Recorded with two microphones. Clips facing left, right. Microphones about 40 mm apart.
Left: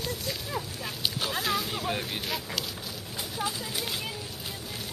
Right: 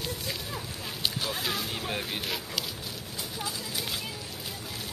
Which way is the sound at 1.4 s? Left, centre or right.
Centre.